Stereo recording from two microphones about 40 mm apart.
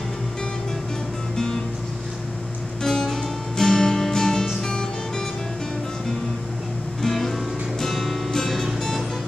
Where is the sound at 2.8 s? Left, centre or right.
Centre.